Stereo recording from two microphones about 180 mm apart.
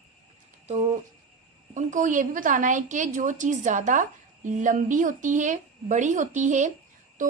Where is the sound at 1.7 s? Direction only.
45° right (ahead or behind).